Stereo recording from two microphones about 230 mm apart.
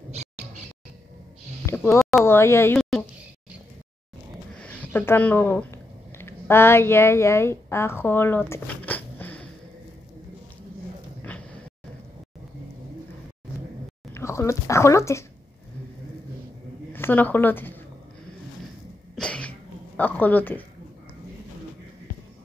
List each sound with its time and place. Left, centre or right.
0.1 s music: right
1.7 s a sound: centre
2.3 s speech: centre
4.6 s speech: centre
14.1 s speech: centre
16.9 s speech: centre
19.1 s throat clearing: centre
20.0 s speech: centre